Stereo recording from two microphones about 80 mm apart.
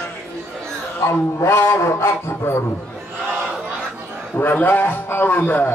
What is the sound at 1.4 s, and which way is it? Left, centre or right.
A man's voice, left.